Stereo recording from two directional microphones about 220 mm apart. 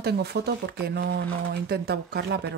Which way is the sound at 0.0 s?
45° right (ahead or behind).